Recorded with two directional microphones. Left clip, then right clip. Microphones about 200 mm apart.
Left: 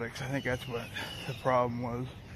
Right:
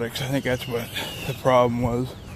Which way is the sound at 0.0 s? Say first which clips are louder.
Right 9 dB; 25° right (ahead or behind).